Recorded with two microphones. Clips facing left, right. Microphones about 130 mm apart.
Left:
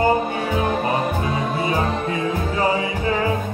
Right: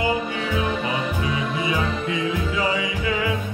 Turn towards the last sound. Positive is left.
turn(degrees=40)  # may be behind; listen again after turning